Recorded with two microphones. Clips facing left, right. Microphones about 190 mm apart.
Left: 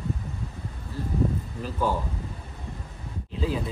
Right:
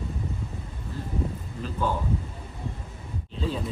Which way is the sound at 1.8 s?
10° left (ahead or behind).